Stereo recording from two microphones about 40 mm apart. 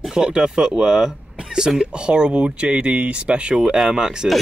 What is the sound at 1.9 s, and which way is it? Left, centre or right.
Speech, right.